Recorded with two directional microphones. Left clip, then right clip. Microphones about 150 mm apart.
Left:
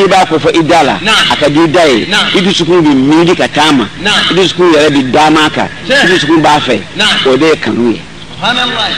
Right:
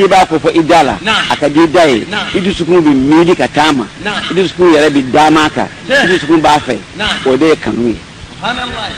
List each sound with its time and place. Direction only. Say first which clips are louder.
0.0 s speech: left 1 dB; 35° right (ahead or behind)